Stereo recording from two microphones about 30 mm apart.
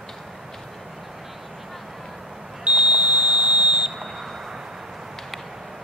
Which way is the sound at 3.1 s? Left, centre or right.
Right.